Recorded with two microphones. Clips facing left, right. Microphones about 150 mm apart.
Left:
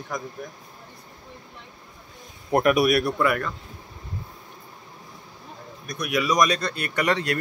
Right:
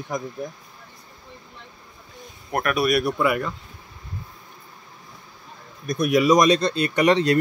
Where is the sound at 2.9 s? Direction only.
5° right (ahead or behind).